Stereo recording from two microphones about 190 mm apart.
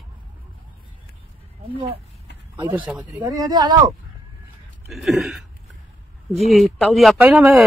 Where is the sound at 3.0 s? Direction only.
20° right (ahead or behind).